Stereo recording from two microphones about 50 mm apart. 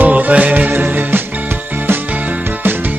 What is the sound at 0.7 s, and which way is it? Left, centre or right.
Music, right.